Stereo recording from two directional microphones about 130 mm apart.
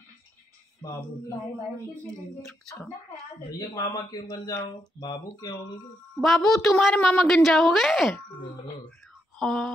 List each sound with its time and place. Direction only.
2.4 s a woman's voice: centre (ahead or behind)
3.5 s speech: 25° left (ahead or behind)
6.2 s a woman's voice: centre (ahead or behind)
9.4 s a woman's voice: 5° left (ahead or behind)